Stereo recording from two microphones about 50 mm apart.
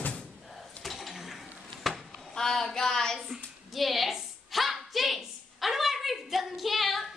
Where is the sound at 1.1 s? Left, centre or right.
Centre.